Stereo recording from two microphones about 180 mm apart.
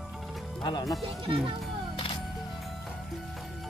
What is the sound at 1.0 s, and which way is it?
Speech, 30° right (ahead or behind).